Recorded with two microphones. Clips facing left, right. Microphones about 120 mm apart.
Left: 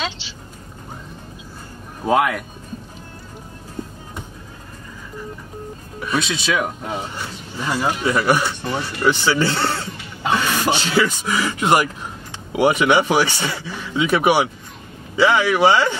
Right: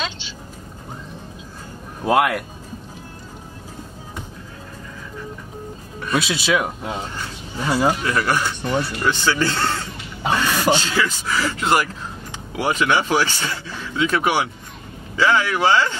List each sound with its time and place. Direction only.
2.0 s speech: 5° right (ahead or behind)
6.1 s speech: 5° right (ahead or behind)
8.0 s speech: 15° left (ahead or behind)